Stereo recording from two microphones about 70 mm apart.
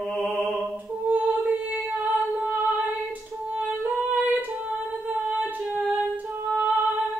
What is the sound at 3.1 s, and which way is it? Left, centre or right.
Female singing, centre.